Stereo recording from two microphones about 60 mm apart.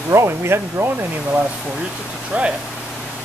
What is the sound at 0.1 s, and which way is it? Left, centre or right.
Speech, right.